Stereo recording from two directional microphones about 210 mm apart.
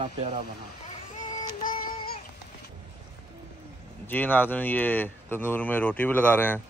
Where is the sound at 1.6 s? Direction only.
40° left (ahead or behind).